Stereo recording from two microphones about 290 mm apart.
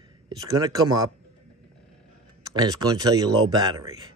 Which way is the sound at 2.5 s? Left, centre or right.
Centre.